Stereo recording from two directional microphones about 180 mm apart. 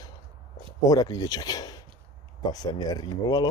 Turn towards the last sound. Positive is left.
turn(degrees=25)  # may be behind; listen again after turning